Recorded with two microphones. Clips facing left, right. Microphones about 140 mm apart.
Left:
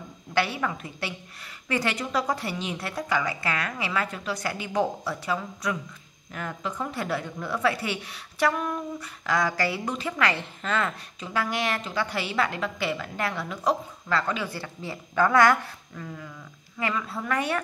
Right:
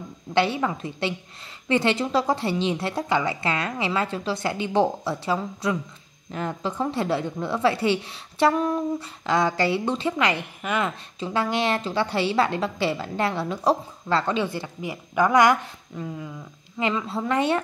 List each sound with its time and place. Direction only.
0.3 s a woman's voice: 25° right (ahead or behind)
11.1 s a woman's voice: 30° right (ahead or behind)